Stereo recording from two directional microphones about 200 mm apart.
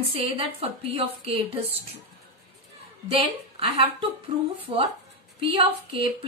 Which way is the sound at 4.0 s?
30° right (ahead or behind).